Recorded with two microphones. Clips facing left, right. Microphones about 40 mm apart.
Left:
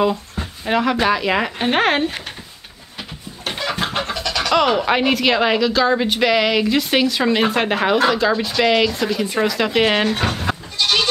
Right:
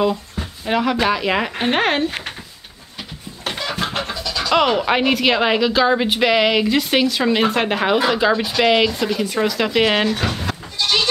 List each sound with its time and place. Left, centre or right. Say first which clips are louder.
0.7 s speech: left 1 dB; centre
3.4 s chicken: left 1 dB; centre
4.1 s a sound: left 2 dB; left
4.6 s speech: even; centre
10.0 s speech: left 1 dB; left